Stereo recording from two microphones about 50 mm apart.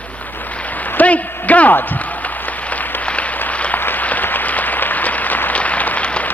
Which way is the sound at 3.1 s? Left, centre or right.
Left.